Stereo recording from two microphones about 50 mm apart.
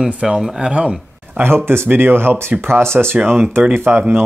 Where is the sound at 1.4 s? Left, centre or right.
Right.